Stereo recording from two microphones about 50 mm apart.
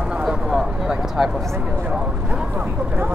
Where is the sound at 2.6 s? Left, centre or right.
Right.